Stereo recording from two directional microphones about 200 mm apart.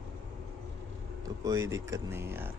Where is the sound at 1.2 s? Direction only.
15° right (ahead or behind).